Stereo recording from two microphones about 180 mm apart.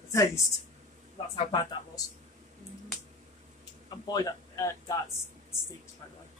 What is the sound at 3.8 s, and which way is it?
Speech, 20° left (ahead or behind).